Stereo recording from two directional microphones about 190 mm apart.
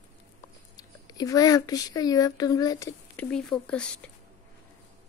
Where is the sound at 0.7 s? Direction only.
20° left (ahead or behind).